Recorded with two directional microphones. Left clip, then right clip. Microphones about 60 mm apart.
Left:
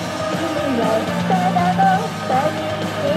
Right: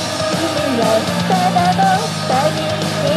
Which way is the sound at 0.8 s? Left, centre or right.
Right.